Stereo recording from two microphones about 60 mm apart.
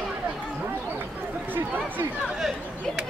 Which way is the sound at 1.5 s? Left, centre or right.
Right.